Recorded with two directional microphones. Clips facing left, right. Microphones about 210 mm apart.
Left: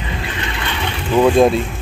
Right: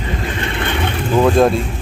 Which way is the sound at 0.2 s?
45° right (ahead or behind).